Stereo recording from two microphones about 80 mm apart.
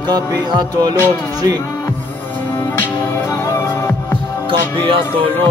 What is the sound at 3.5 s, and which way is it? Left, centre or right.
Music, left.